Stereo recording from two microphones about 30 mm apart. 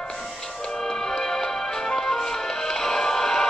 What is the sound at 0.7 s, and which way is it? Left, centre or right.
Music, centre.